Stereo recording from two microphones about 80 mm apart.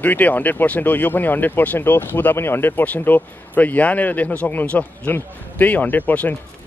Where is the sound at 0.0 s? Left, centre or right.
Left.